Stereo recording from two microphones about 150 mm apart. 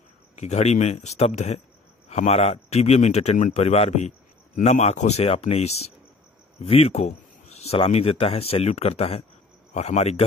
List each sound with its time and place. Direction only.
0.4 s speech: 45° left (ahead or behind)